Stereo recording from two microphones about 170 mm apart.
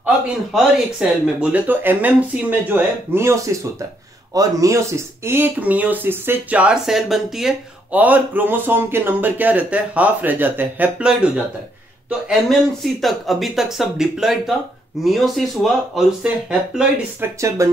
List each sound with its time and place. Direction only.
0.0 s speech: centre (ahead or behind)
17.6 s speech: 15° right (ahead or behind)